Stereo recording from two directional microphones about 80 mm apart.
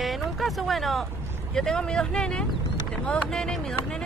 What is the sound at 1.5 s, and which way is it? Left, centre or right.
Speech, centre.